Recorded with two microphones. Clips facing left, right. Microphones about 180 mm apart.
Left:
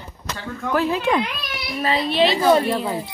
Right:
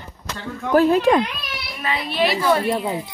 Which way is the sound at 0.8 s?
45° right (ahead or behind).